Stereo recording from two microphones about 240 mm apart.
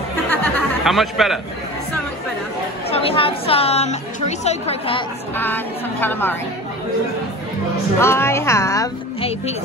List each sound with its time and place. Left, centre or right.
0.3 s a sound: centre
2.9 s a woman's voice: left
5.3 s speech: centre
8.0 s speech: centre